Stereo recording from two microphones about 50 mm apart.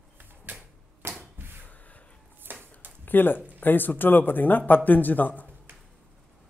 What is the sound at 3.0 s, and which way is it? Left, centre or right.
A man's voice, left.